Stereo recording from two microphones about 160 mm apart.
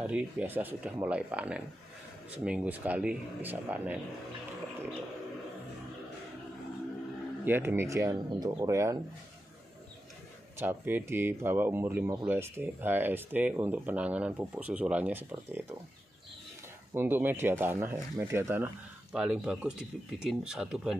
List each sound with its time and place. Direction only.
0.0 s speech: 10° right (ahead or behind)
7.4 s speech: 15° right (ahead or behind)
10.6 s speech: 10° right (ahead or behind)
16.9 s speech: 15° right (ahead or behind)